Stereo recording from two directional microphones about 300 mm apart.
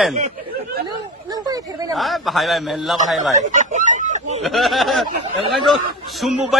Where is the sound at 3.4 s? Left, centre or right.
Right.